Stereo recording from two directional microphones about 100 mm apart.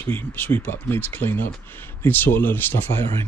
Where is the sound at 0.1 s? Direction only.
20° left (ahead or behind).